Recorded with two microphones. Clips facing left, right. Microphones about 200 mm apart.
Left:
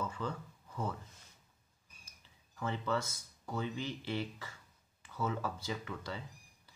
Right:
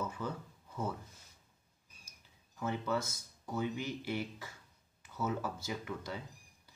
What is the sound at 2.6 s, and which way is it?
Speech, 15° right (ahead or behind).